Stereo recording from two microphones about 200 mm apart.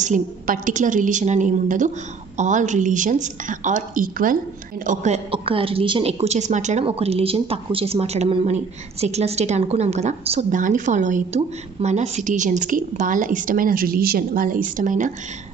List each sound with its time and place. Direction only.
0.0 s a woman's voice: 40° right (ahead or behind)